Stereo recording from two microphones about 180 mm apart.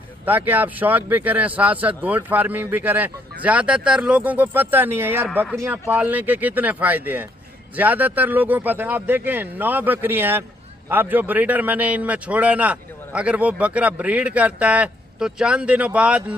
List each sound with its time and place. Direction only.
0.2 s speech: 10° right (ahead or behind)